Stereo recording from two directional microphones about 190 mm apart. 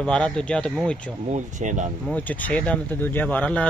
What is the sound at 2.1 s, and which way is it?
Speech, 10° left (ahead or behind).